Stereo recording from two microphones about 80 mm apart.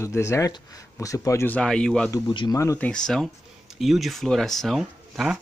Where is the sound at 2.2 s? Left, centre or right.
Left.